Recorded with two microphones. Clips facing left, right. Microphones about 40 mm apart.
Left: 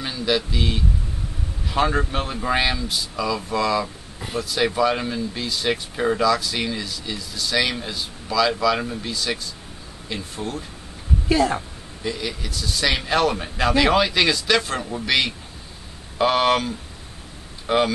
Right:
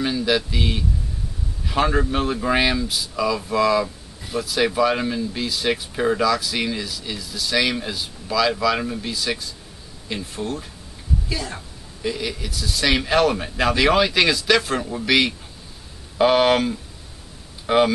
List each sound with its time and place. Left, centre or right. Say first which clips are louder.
0.0 s speech: right 2 dB; centre
11.2 s speech: left 14 dB; left
12.0 s speech: right 2 dB; centre